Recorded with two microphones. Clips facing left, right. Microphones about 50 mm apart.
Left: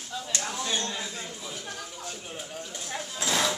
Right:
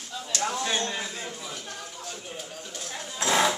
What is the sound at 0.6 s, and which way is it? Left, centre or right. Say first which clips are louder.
Speech: right 2 dB; right.